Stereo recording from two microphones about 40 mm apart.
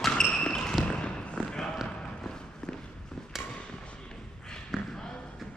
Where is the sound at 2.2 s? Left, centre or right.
Centre.